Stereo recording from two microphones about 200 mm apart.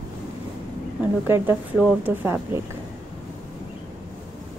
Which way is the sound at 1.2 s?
10° right (ahead or behind).